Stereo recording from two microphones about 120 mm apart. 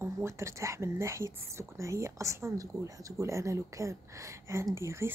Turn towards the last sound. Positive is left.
turn(degrees=-25)  # may be behind; listen again after turning